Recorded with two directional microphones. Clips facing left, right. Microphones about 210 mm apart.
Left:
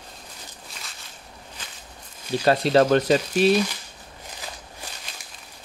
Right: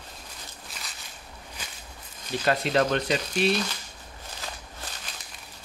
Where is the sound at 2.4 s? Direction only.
35° left (ahead or behind).